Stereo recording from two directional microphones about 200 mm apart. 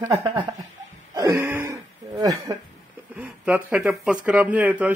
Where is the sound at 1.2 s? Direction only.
15° right (ahead or behind).